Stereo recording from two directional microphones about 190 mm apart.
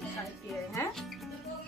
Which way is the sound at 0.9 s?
Centre (ahead or behind).